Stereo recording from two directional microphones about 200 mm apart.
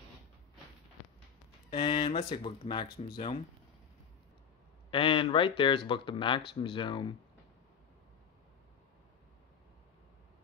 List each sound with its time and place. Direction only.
1.7 s speech: 25° left (ahead or behind)
4.9 s speech: 25° left (ahead or behind)